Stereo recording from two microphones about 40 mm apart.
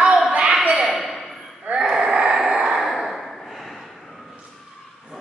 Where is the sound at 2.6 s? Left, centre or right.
Centre.